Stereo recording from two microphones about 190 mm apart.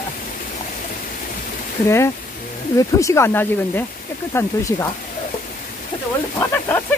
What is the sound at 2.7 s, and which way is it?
Speech, 15° left (ahead or behind).